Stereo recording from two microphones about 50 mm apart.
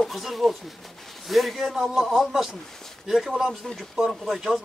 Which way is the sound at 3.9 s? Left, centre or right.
Centre.